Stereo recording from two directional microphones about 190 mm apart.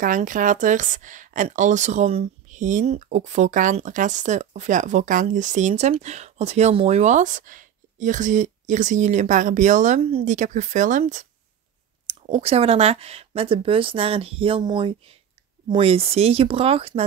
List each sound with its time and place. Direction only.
0.0 s speech: 45° right (ahead or behind)
12.1 s speech: 30° right (ahead or behind)